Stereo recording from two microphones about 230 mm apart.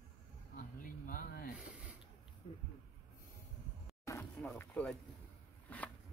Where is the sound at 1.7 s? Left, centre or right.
Centre.